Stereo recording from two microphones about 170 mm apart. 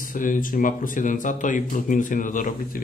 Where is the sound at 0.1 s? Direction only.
50° left (ahead or behind).